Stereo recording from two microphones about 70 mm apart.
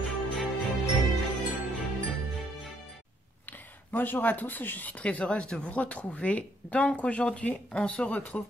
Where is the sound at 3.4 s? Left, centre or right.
Left.